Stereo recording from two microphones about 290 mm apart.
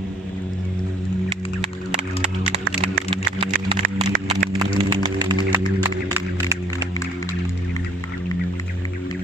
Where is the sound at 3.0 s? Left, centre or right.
Centre.